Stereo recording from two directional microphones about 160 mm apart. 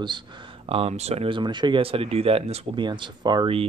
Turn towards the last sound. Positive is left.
turn(degrees=-30)  # may be behind; listen again after turning